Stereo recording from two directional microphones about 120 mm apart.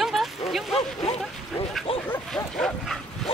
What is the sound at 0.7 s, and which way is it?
Speech, 55° left (ahead or behind).